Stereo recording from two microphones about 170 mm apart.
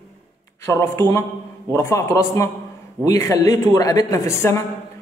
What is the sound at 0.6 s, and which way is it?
A man's voice, 15° left (ahead or behind).